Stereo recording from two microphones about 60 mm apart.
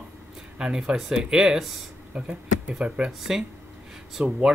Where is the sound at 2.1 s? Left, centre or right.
Right.